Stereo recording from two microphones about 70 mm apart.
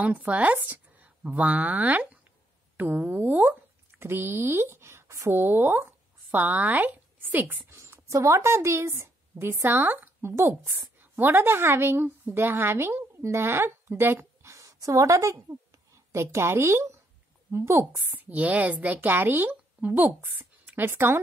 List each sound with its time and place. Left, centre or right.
0.0 s speech: centre; by 5.3 s right
5.3 s a woman's voice: right
18.1 s a woman's voice: right